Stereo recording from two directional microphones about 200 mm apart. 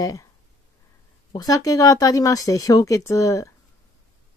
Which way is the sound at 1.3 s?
20° left (ahead or behind).